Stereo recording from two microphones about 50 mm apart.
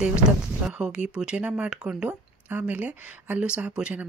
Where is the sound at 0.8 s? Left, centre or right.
Centre.